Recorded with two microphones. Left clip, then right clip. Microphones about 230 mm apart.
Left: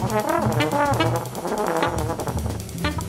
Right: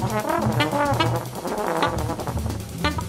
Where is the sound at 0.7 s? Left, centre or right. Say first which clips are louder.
Left 1 dB; left.